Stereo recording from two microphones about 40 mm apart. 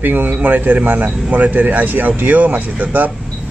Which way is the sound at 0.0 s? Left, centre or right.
Right.